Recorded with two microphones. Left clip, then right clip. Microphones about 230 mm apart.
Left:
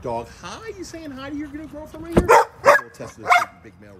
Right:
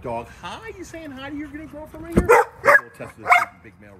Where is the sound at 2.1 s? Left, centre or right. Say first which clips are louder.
Left 1 dB; centre.